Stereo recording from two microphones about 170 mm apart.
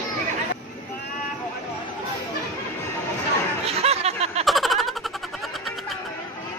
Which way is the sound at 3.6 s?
35° right (ahead or behind).